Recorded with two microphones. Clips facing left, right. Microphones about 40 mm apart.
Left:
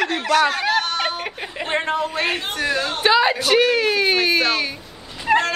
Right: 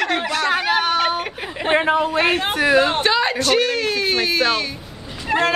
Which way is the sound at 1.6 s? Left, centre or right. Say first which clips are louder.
Right 5 dB; centre.